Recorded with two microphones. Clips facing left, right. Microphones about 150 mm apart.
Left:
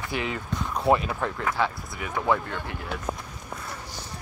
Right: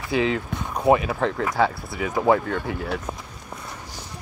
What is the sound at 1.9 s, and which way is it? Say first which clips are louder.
Speech: right 6 dB; 30° right (ahead or behind).